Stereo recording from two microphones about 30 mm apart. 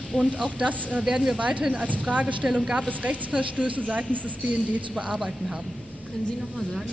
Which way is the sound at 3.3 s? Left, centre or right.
Right.